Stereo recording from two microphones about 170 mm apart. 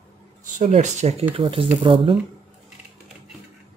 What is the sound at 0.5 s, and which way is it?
Speech, 45° right (ahead or behind).